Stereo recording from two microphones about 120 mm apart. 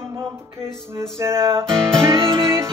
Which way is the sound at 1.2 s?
25° right (ahead or behind).